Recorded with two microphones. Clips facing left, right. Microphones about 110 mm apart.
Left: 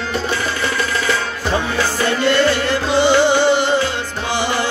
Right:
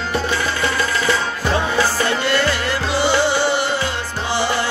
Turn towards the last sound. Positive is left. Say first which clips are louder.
# left 4 dB
turn(degrees=20)  # may be behind; listen again after turning